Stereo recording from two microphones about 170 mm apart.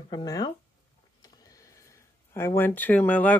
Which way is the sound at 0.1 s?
25° left (ahead or behind).